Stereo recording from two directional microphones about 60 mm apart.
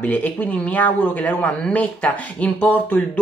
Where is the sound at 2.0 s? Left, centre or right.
Left.